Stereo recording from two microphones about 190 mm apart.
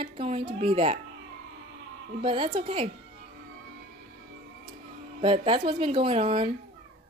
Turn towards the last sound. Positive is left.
turn(degrees=-30)  # may be behind; listen again after turning